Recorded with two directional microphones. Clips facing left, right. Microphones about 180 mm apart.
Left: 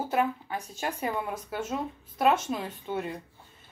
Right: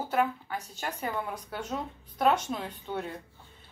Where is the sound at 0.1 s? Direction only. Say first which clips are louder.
Right 1 dB; 15° left (ahead or behind).